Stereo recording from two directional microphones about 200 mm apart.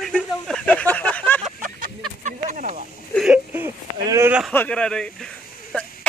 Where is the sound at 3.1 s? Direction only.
5° right (ahead or behind).